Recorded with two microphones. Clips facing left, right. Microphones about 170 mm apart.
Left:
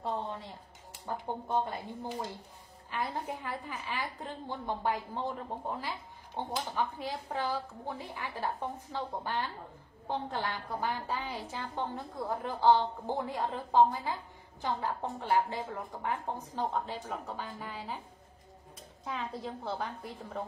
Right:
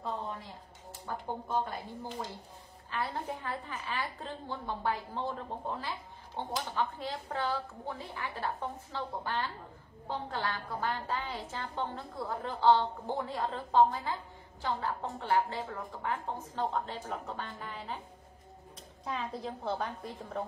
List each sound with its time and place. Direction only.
1.1 s speech: 20° left (ahead or behind)
2.9 s a woman's voice: 15° left (ahead or behind)
19.0 s a woman's voice: centre (ahead or behind)